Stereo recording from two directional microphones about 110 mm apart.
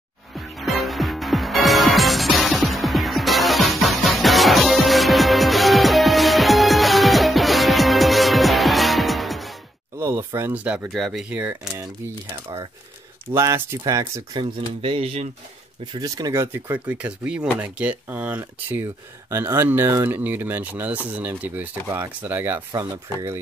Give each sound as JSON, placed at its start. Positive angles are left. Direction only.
{"t": 0.3, "sound": "music", "side_deg": 0}
{"t": 9.9, "sound": "speech", "side_deg": -25}
{"t": 10.9, "sound": "speech", "side_deg": -5}
{"t": 13.3, "sound": "speech", "side_deg": -25}
{"t": 14.4, "sound": "speech", "side_deg": -55}
{"t": 15.9, "sound": "speech", "side_deg": -35}
{"t": 16.5, "sound": "speech", "side_deg": -20}